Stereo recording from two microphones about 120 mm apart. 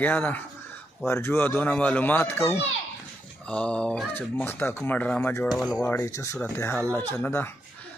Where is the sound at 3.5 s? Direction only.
10° left (ahead or behind).